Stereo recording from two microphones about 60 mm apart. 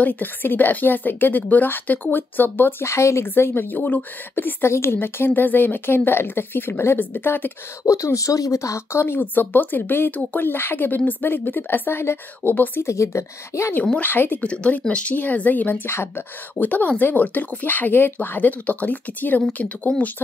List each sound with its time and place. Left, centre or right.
0.0 s speech: left
2.8 s a woman's voice: left
3.3 s speech: left
7.8 s speech: left
12.8 s a woman's voice: left
14.0 s speech: left
14.4 s speech: centre
15.9 s speech: left
19.9 s speech: centre